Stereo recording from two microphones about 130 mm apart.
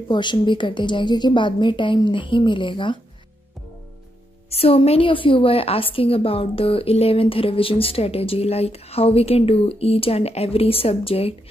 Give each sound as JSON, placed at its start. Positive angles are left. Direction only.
{"t": 0.1, "sound": "a woman's voice", "side_deg": 35}
{"t": 4.5, "sound": "a woman's voice", "side_deg": 50}